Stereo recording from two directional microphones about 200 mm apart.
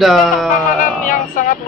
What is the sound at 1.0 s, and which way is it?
Speech, 40° left (ahead or behind).